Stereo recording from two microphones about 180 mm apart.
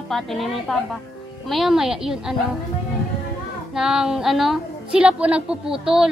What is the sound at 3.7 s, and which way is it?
A woman's voice, 5° right (ahead or behind).